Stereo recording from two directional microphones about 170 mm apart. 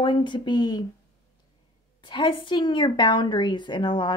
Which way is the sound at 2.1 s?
30° left (ahead or behind).